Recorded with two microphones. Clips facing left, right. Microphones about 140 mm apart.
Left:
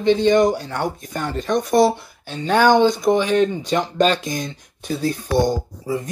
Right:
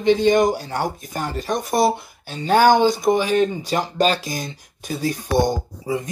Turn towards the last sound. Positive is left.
turn(degrees=-15)  # may be behind; listen again after turning